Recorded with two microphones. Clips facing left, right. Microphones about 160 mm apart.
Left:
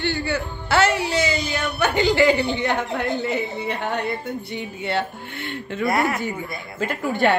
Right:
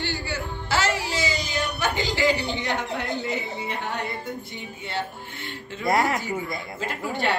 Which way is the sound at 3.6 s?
70° left (ahead or behind).